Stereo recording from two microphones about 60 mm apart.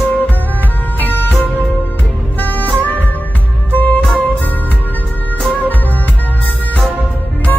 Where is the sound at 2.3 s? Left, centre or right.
Left.